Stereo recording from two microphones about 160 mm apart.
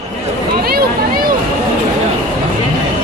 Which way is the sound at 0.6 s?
70° right (ahead or behind).